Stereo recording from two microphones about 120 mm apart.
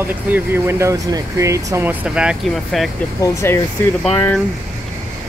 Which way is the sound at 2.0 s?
10° right (ahead or behind).